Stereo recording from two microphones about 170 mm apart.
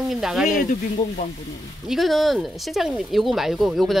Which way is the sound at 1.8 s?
Centre (ahead or behind).